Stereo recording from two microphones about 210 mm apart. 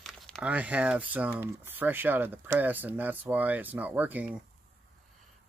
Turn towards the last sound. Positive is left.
turn(degrees=-5)  # may be behind; listen again after turning